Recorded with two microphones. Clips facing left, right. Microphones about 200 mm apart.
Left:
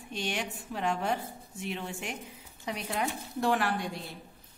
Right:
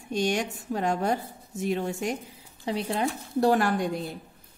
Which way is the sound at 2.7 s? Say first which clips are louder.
Right 6 dB; 30° right (ahead or behind).